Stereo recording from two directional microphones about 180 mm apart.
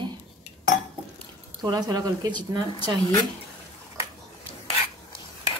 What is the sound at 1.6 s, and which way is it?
A woman's voice, 25° right (ahead or behind).